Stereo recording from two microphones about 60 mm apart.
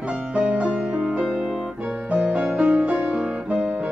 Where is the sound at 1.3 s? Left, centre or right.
Centre.